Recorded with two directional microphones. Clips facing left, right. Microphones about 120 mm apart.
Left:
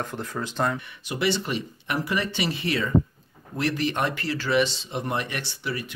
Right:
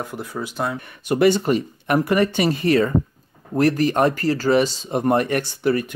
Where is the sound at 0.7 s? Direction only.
45° right (ahead or behind).